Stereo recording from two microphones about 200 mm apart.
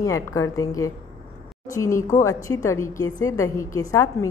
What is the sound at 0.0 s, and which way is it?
A woman's voice, 15° left (ahead or behind).